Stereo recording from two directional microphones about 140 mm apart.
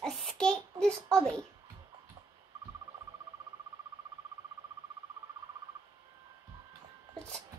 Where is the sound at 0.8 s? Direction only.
5° left (ahead or behind).